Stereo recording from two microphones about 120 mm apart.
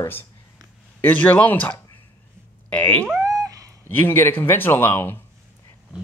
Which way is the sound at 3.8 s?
15° left (ahead or behind).